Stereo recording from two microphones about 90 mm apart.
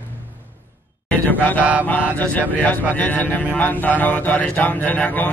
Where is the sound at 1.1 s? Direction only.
20° left (ahead or behind).